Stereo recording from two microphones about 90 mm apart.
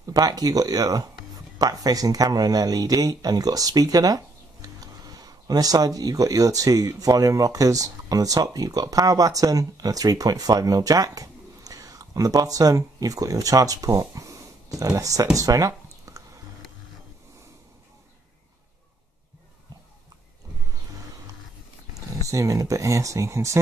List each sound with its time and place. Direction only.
0.0 s speech: 45° right (ahead or behind)
15.3 s a sound: 40° right (ahead or behind)
22.2 s speech: 35° right (ahead or behind)